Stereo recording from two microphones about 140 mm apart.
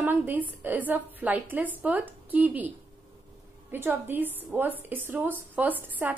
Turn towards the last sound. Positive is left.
turn(degrees=-15)  # may be behind; listen again after turning